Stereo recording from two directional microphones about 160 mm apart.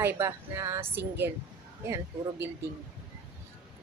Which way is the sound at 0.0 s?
15° right (ahead or behind).